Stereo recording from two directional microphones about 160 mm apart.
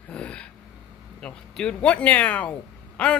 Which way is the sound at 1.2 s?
5° left (ahead or behind).